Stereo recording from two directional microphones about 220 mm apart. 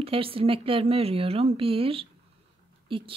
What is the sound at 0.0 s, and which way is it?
Speech, 25° right (ahead or behind).